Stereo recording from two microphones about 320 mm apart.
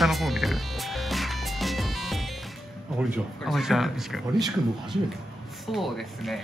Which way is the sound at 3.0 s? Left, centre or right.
Centre.